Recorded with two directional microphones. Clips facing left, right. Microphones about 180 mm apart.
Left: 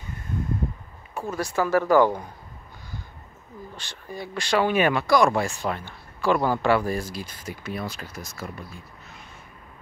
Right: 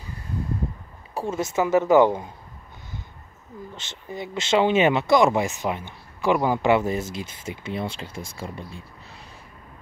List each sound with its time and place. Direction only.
1.1 s speech: 25° right (ahead or behind)
3.7 s speech: 20° right (ahead or behind)